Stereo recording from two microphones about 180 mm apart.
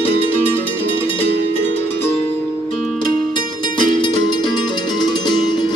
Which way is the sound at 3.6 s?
25° left (ahead or behind).